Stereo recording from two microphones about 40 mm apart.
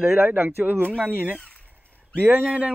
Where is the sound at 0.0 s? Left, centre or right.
Right.